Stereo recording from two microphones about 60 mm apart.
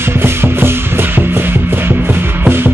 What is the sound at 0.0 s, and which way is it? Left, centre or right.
Music, right.